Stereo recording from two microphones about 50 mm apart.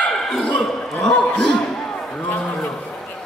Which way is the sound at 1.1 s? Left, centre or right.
Left.